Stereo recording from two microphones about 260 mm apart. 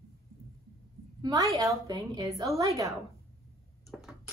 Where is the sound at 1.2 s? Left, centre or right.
Centre.